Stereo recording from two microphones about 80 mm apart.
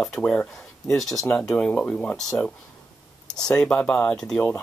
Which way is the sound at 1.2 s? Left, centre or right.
Centre.